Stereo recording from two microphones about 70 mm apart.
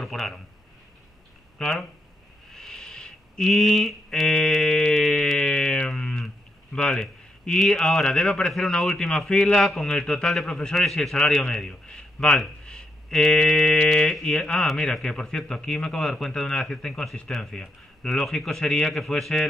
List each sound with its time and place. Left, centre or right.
0.0 s a man's voice: centre
1.6 s speech: centre
2.5 s a sound: centre
8.5 s a man's voice: centre